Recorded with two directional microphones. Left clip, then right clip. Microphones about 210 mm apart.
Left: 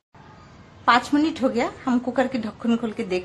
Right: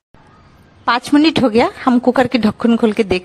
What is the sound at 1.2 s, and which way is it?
A woman's voice, 45° right (ahead or behind).